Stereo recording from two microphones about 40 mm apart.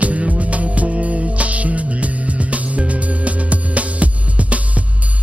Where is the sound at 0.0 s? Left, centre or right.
Right.